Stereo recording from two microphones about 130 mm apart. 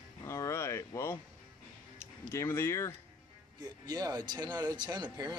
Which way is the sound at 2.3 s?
20° left (ahead or behind).